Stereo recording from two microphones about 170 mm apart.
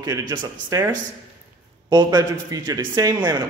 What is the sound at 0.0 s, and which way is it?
A man's voice, 20° right (ahead or behind).